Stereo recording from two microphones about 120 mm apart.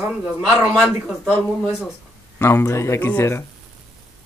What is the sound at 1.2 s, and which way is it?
Speech, 20° left (ahead or behind).